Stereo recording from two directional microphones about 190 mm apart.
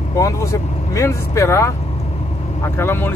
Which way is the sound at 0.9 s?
15° left (ahead or behind).